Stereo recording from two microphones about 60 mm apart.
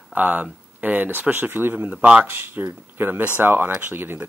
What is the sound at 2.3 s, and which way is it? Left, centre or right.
A man's voice, right.